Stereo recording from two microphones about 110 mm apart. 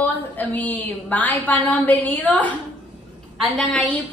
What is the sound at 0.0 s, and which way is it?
A woman's voice, 15° left (ahead or behind).